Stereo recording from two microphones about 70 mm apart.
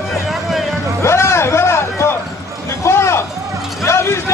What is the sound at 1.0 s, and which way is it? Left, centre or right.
A man's voice, left.